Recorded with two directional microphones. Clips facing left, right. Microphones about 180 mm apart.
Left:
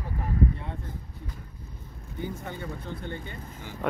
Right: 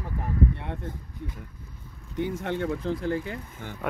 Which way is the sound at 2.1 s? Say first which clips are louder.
Right 7 dB; 80° right.